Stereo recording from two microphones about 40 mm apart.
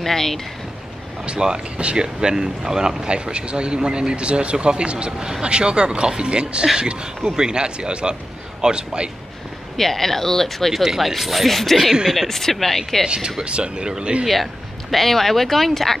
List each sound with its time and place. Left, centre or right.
0.0 s speech: centre
1.2 s speech: right
9.8 s speech: centre
10.7 s speech: centre
11.9 s speech: centre
12.2 s speech: centre
13.0 s speech: centre
14.2 s speech: centre